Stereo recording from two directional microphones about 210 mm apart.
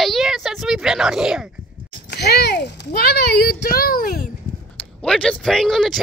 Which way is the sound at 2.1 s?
50° left (ahead or behind).